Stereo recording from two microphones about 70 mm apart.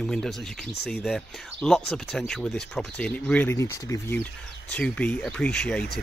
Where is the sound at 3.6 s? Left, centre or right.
Left.